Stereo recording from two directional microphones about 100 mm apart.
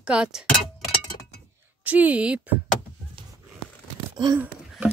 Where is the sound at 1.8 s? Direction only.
15° right (ahead or behind).